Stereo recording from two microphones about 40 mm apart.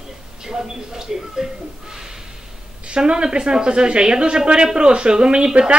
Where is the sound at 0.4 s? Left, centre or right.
Centre.